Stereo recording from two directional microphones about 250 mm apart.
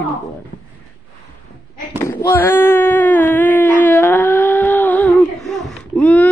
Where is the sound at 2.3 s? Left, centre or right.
Centre.